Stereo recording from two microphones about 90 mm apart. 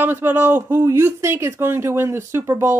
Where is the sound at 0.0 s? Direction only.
25° right (ahead or behind).